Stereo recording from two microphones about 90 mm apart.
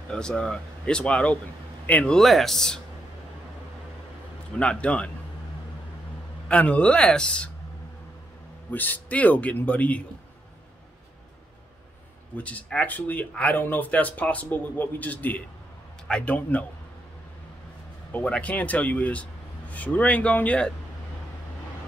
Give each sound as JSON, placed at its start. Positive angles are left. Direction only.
{"t": 0.1, "sound": "speech", "side_deg": 10}
{"t": 2.1, "sound": "speech", "side_deg": 5}
{"t": 4.6, "sound": "speech", "side_deg": 10}
{"t": 6.5, "sound": "speech", "side_deg": 15}
{"t": 8.7, "sound": "speech", "side_deg": 20}
{"t": 12.4, "sound": "speech", "side_deg": 15}
{"t": 18.1, "sound": "speech", "side_deg": 15}